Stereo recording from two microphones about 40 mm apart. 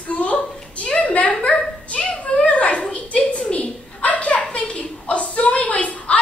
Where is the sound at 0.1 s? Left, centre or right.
Left.